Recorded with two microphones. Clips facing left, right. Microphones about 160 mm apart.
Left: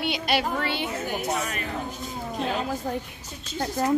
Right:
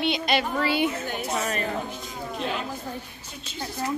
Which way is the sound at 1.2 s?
35° right (ahead or behind).